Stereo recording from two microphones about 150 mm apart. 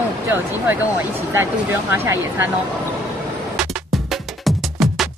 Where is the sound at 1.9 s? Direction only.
15° right (ahead or behind).